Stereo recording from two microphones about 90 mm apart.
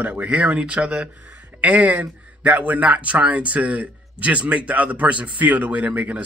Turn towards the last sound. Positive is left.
turn(degrees=-15)  # may be behind; listen again after turning